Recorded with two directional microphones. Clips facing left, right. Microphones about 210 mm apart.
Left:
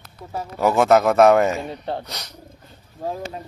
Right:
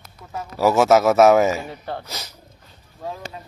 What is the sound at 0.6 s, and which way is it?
A man's voice, 5° right (ahead or behind).